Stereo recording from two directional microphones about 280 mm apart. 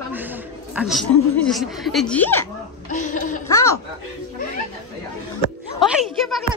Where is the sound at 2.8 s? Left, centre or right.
Left.